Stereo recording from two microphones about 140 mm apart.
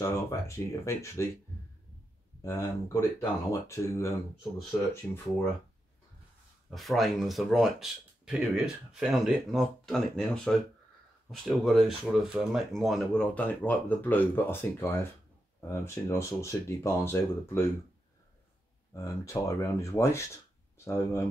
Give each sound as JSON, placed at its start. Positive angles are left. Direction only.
{"t": 0.0, "sound": "speech", "side_deg": 20}
{"t": 2.4, "sound": "speech", "side_deg": 20}
{"t": 6.7, "sound": "speech", "side_deg": 0}
{"t": 18.9, "sound": "speech", "side_deg": 20}